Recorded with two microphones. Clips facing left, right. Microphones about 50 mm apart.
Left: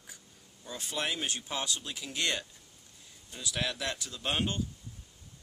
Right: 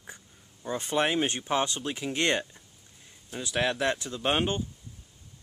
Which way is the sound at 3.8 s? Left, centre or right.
Right.